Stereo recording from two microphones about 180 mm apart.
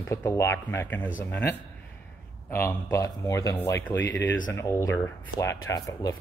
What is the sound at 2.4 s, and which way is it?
Speech, 15° left (ahead or behind).